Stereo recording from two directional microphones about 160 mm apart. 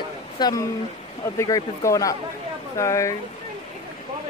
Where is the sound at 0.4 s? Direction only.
25° left (ahead or behind).